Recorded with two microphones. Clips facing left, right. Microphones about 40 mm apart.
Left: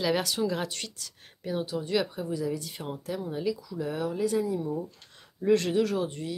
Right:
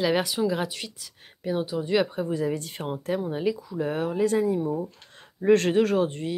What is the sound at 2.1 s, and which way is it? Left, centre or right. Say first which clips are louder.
Speech: right 4 dB; right.